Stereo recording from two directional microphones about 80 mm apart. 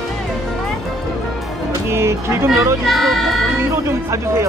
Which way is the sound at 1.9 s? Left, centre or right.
Right.